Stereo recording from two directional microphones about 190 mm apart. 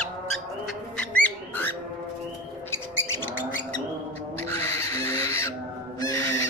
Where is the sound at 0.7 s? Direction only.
5° left (ahead or behind).